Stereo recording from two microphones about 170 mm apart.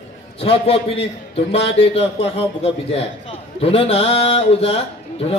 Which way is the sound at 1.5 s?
90° left.